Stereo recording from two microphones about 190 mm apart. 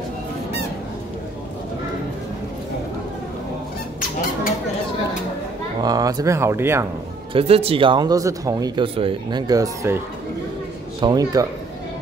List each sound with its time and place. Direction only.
5.8 s speech: 20° right (ahead or behind)
7.3 s speech: 30° right (ahead or behind)
11.0 s speech: 20° right (ahead or behind)